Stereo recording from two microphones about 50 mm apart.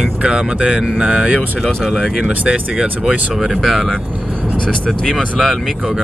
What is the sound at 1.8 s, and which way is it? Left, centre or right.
Speech, centre.